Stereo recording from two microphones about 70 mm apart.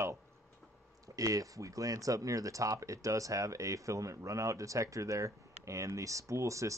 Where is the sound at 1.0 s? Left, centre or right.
Right.